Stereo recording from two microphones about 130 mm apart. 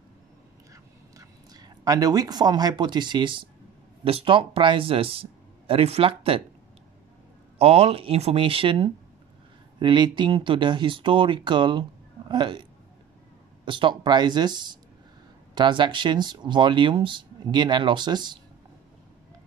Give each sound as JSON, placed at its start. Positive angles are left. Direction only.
{"t": 1.1, "sound": "speech", "side_deg": -30}
{"t": 7.5, "sound": "speech", "side_deg": -50}
{"t": 13.7, "sound": "speech", "side_deg": -40}